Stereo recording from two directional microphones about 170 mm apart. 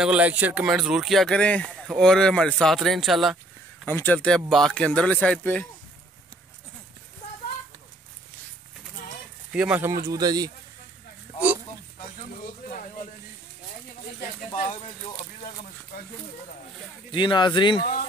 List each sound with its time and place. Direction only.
0.0 s speech: 5° right (ahead or behind)
3.8 s a man's voice: 10° left (ahead or behind)
9.5 s speech: 5° right (ahead or behind); by 10.5 s 25° right (ahead or behind)
12.2 s speech: 50° left (ahead or behind)
14.5 s speech: 45° left (ahead or behind)
17.1 s speech: 30° left (ahead or behind)